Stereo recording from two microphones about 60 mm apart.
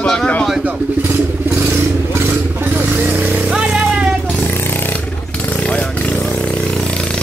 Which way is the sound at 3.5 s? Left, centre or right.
Centre.